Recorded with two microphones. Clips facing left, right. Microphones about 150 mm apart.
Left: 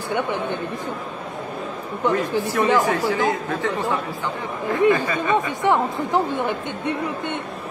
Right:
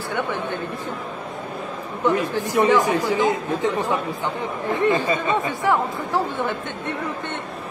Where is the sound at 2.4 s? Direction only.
15° right (ahead or behind).